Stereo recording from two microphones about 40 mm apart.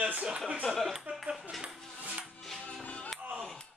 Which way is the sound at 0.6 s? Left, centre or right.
Centre.